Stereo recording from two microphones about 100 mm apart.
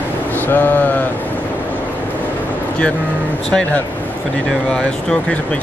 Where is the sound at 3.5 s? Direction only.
5° left (ahead or behind).